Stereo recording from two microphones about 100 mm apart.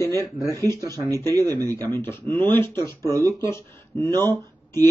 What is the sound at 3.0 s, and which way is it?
Speech, 35° right (ahead or behind).